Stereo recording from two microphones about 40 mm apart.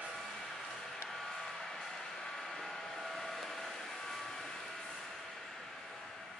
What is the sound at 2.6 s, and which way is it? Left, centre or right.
Vehicle, centre.